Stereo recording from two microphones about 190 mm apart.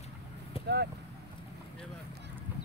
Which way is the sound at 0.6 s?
60° right (ahead or behind).